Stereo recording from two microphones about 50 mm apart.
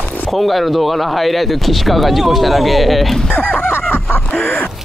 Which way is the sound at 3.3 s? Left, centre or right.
Left.